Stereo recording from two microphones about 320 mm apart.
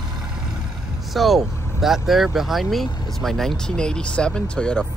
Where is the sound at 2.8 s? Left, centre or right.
Centre.